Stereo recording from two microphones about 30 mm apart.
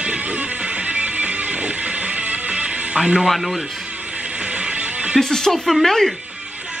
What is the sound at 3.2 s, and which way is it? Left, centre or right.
Speech, centre.